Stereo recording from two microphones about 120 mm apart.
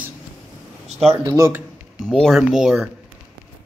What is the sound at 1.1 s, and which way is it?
Speech, 30° right (ahead or behind).